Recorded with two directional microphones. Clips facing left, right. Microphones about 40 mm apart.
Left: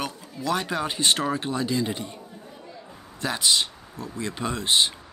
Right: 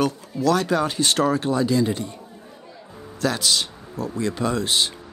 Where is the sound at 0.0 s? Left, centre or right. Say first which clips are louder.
Right 9 dB; centre.